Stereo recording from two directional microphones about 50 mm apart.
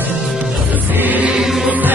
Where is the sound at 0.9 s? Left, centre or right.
Right.